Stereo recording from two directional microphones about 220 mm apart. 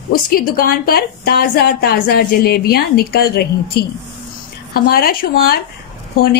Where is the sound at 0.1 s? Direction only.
40° left (ahead or behind).